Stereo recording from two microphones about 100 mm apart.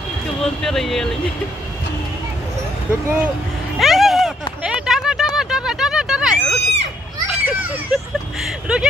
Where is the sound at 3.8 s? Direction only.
Centre (ahead or behind).